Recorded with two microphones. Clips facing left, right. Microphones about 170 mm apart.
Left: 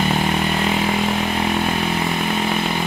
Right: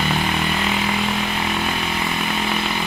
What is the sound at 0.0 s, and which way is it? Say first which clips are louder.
Vehicle: left 3 dB; 30° left (ahead or behind).